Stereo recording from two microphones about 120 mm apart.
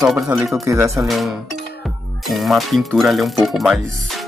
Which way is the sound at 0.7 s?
25° right (ahead or behind).